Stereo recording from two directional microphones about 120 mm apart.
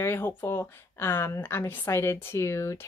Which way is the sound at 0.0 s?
20° left (ahead or behind).